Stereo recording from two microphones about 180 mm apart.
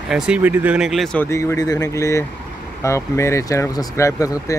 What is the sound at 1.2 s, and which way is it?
Speech, 15° left (ahead or behind).